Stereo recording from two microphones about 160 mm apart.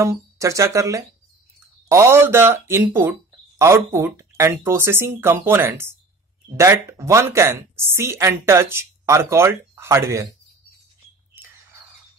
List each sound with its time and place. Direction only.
0.0 s speech: 20° right (ahead or behind)